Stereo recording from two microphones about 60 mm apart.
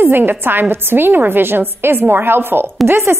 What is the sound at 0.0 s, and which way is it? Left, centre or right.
A woman's voice, right.